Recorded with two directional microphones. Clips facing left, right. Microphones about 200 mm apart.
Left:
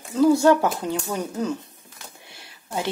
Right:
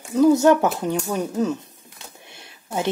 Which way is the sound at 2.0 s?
20° right (ahead or behind).